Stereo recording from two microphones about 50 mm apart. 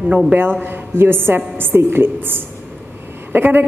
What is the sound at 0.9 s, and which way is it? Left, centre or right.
A woman's voice, right.